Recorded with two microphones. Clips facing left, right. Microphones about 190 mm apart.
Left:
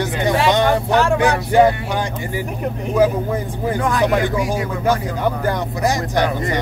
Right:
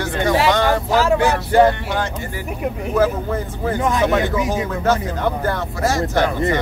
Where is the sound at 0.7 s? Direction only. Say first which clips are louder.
Left 1 dB; 5° right (ahead or behind).